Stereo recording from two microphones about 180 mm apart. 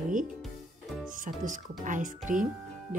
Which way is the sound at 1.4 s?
45° right (ahead or behind).